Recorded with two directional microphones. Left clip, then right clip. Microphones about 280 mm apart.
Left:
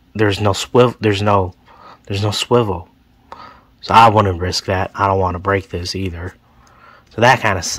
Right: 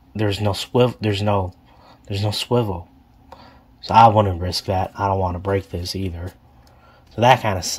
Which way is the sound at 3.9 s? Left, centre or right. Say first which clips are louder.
Left 3 dB; left.